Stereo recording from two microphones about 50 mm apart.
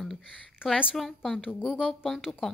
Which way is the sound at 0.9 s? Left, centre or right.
Centre.